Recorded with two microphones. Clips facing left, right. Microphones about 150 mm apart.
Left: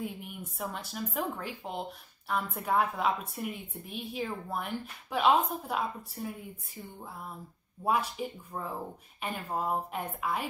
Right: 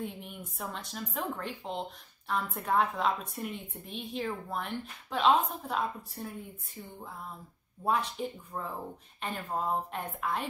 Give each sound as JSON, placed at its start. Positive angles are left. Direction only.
{"t": 0.0, "sound": "a woman's voice", "side_deg": 5}
{"t": 7.8, "sound": "a woman's voice", "side_deg": 10}